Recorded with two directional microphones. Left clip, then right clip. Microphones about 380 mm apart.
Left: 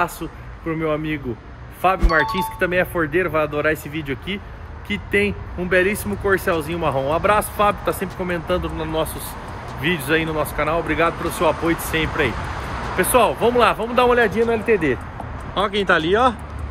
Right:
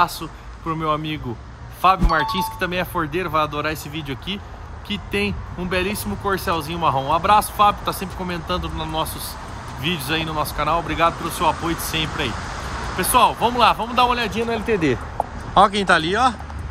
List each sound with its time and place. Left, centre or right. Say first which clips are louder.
0.0 s speech: right 3 dB; centre
14.5 s speech: left 2 dB; centre